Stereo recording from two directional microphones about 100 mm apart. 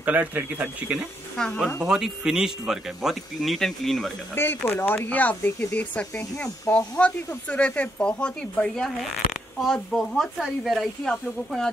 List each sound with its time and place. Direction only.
0.0 s speech: 15° right (ahead or behind)
1.4 s speech: 5° left (ahead or behind)
1.8 s speech: 5° right (ahead or behind)
4.4 s speech: 25° left (ahead or behind); by 11.7 s 5° left (ahead or behind)